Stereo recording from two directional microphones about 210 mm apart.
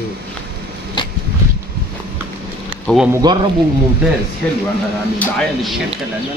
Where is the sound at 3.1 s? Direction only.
20° right (ahead or behind).